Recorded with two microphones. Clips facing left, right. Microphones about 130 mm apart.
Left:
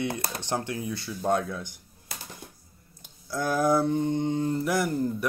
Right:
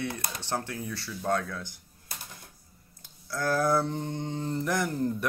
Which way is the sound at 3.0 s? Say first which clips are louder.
Left 2 dB; 20° left (ahead or behind).